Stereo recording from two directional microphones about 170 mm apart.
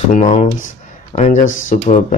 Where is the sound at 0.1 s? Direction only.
45° left (ahead or behind).